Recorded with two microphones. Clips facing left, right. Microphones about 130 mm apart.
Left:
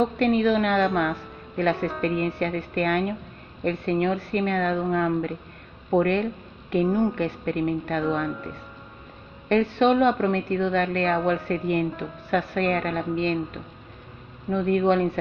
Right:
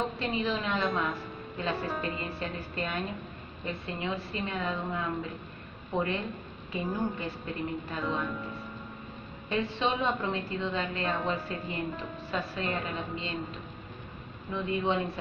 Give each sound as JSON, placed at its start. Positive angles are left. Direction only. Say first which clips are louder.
{"t": 0.2, "sound": "a woman's voice", "louder": "left 11 dB", "side_deg": 65}
{"t": 9.5, "sound": "a woman's voice", "louder": "left 10 dB", "side_deg": 65}
{"t": 14.5, "sound": "a woman's voice", "louder": "left 9 dB", "side_deg": 55}